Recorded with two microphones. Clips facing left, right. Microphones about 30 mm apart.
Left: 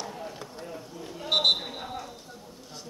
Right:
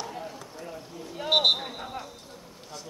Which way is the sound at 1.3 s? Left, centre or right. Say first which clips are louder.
Right 1 dB; centre.